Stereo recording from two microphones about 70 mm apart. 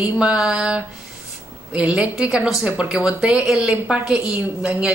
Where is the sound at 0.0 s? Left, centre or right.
Centre.